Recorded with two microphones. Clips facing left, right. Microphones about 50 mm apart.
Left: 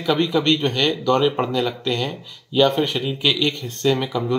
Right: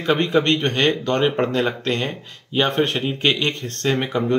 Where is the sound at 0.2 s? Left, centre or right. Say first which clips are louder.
Even; right.